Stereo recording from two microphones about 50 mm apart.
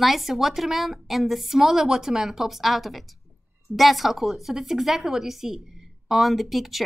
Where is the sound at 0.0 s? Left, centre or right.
Centre.